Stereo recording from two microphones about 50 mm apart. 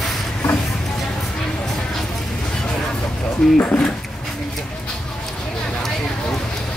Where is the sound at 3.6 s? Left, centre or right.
Left.